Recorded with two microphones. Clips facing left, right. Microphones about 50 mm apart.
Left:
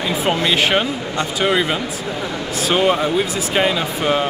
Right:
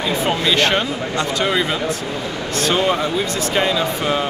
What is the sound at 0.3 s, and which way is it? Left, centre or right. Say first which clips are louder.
Speech: left 1 dB; centre.